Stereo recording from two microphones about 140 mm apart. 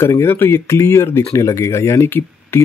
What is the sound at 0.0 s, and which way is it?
Speech, 20° left (ahead or behind).